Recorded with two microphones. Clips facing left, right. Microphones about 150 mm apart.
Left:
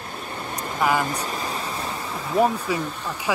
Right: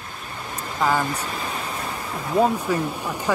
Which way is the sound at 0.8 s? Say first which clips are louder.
Even; 10° left (ahead or behind).